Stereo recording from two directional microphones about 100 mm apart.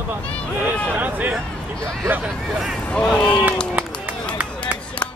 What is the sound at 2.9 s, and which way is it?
Speech, 5° left (ahead or behind).